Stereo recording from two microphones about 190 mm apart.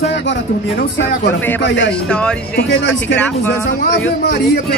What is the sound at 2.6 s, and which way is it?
Speech, 65° left (ahead or behind).